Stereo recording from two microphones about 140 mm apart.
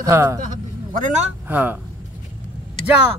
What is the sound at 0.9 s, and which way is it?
Speech, 70° right (ahead or behind).